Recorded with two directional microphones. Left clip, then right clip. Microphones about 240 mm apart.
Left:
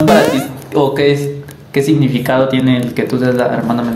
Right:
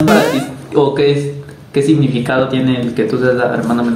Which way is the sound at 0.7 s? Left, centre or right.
Left.